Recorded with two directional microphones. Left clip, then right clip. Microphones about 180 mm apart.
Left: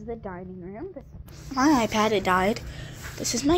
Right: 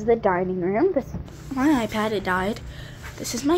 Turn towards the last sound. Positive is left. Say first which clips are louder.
# even
turn(degrees=0)  # may be behind; listen again after turning